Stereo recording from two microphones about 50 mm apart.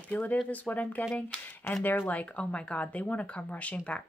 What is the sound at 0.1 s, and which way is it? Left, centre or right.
Speech, left.